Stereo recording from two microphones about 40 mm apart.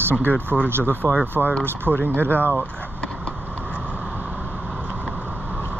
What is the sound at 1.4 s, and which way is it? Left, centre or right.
Speech, centre.